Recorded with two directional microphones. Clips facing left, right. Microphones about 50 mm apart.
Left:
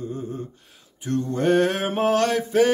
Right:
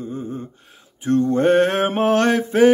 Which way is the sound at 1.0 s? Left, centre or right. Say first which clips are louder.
Right 6 dB; right.